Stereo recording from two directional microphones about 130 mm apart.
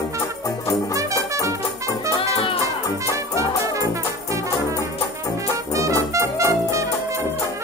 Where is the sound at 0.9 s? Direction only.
25° right (ahead or behind).